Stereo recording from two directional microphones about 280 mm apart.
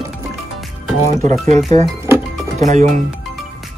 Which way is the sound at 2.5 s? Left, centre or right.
Right.